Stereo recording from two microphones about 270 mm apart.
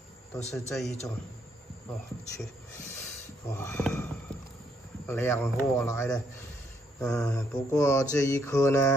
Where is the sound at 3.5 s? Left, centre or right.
Centre.